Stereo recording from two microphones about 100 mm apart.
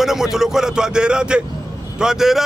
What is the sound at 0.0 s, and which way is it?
A man's voice, 5° right (ahead or behind).